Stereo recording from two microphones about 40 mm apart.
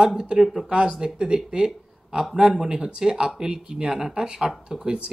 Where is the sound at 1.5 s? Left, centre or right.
Right.